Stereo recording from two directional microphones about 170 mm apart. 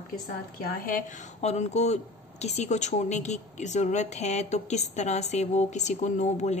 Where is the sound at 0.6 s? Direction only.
60° left (ahead or behind).